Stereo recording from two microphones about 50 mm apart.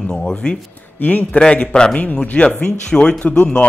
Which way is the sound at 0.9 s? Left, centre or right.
Left.